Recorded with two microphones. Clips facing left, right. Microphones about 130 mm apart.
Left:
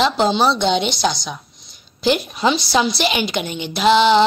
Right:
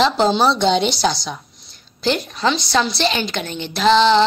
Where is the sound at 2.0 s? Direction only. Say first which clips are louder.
Left 2 dB; 15° left (ahead or behind).